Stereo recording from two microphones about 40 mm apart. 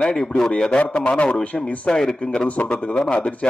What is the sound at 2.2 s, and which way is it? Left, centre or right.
A man's voice, left.